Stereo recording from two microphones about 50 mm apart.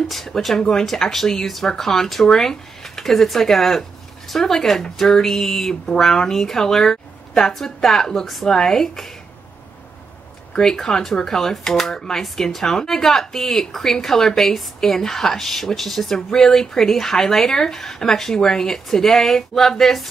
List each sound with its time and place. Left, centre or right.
0.1 s speech: centre
10.5 s speech: centre